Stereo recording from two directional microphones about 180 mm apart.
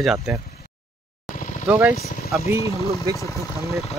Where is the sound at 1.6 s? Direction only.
15° right (ahead or behind).